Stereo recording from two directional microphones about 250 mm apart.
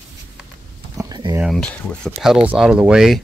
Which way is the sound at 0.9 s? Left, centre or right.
Centre.